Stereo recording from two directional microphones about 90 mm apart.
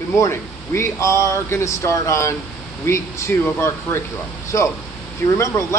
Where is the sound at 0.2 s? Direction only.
30° left (ahead or behind).